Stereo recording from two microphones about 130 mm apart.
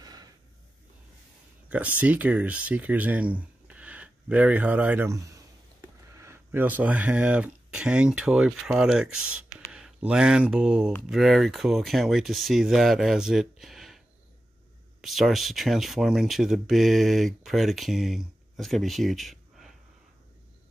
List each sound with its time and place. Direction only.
0.0 s snort: 30° right (ahead or behind)
2.0 s speech: 10° right (ahead or behind)
5.1 s speech: 25° right (ahead or behind); by 19.7 s centre (ahead or behind)